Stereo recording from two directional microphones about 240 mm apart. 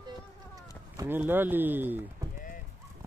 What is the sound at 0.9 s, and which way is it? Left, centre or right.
Speech, centre.